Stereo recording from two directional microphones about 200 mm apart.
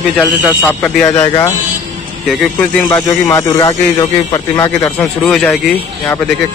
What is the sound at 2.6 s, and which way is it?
Speech, 15° left (ahead or behind).